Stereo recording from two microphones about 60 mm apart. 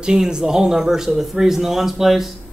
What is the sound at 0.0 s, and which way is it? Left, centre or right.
A man's voice, centre.